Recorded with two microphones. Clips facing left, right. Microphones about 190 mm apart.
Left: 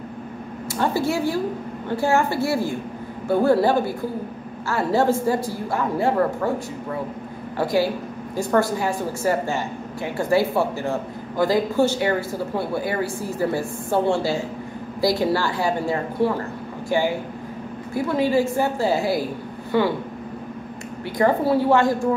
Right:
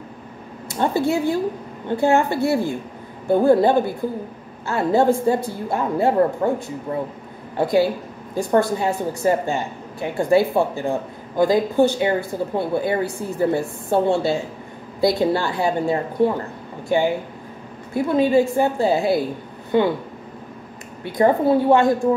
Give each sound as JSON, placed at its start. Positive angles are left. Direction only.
{"t": 0.7, "sound": "a woman's voice", "side_deg": -20}
{"t": 8.4, "sound": "a woman's voice", "side_deg": -20}
{"t": 21.0, "sound": "a woman's voice", "side_deg": -20}